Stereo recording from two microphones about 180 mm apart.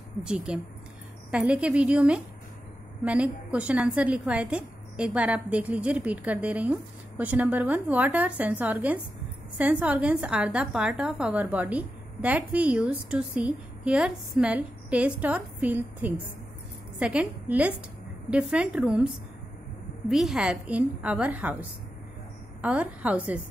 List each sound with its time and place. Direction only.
0.2 s a woman's voice: 5° right (ahead or behind)
20.1 s a woman's voice: centre (ahead or behind)